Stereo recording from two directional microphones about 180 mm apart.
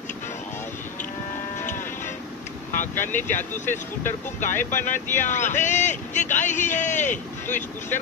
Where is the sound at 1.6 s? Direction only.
45° left (ahead or behind).